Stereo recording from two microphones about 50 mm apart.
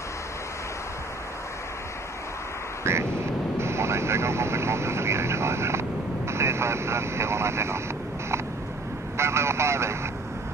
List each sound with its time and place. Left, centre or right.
2.8 s vehicle: right
3.5 s speech: right
9.1 s speech: right